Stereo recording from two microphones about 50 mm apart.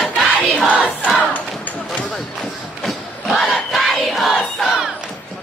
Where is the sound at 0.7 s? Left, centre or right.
Left.